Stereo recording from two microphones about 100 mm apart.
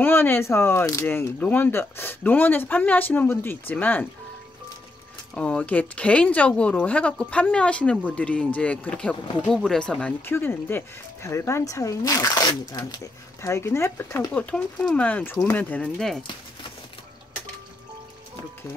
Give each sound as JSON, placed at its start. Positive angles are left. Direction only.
{"t": 0.0, "sound": "speech", "side_deg": 20}
{"t": 5.3, "sound": "speech", "side_deg": 10}
{"t": 10.2, "sound": "speech", "side_deg": 20}
{"t": 14.3, "sound": "speech", "side_deg": 10}
{"t": 15.0, "sound": "speech", "side_deg": 15}